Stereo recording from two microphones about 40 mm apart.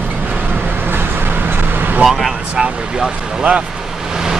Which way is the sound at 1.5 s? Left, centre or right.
Right.